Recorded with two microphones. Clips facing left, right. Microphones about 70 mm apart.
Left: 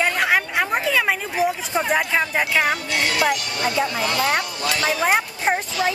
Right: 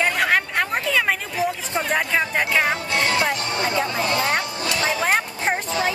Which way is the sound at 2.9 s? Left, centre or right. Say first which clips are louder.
Even; right.